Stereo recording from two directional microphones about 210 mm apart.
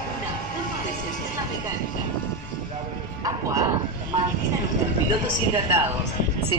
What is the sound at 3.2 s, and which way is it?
Music, 15° right (ahead or behind).